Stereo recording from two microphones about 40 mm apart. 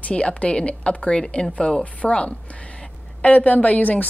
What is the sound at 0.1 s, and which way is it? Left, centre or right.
A woman's voice, left.